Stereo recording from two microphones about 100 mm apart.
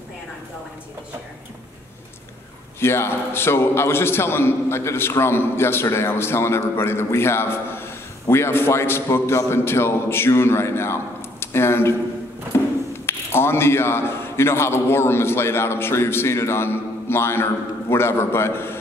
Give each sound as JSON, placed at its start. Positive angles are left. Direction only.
{"t": 2.8, "sound": "a man's voice", "side_deg": 25}